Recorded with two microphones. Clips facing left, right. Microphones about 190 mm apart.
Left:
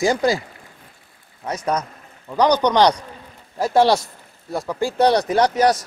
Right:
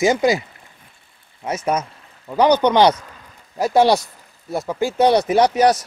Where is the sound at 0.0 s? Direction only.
20° right (ahead or behind).